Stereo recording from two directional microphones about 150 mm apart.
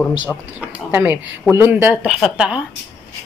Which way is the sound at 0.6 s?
10° right (ahead or behind).